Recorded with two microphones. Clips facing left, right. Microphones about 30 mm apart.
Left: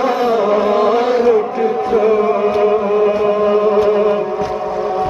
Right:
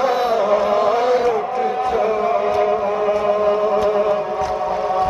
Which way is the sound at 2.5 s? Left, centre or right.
Centre.